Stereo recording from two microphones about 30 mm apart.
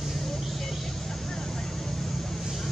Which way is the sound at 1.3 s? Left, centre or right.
Centre.